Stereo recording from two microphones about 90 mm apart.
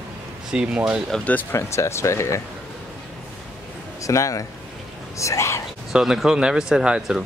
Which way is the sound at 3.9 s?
35° left (ahead or behind).